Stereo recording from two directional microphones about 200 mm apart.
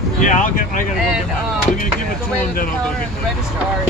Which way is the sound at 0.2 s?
40° left (ahead or behind).